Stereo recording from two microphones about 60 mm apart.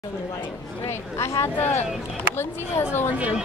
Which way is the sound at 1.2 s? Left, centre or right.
Left.